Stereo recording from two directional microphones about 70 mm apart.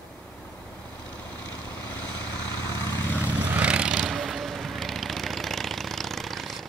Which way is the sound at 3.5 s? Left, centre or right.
Centre.